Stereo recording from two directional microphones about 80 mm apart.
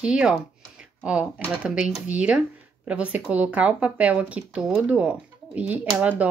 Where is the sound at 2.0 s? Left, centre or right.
Centre.